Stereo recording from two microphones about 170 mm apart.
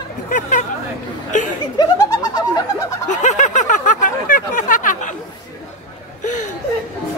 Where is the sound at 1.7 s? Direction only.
20° left (ahead or behind).